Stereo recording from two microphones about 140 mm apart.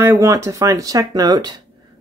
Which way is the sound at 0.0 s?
20° right (ahead or behind).